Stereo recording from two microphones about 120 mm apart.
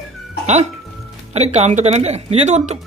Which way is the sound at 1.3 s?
65° right (ahead or behind).